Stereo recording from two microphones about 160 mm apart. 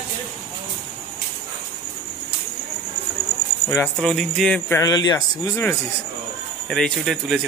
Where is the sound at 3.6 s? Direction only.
10° left (ahead or behind).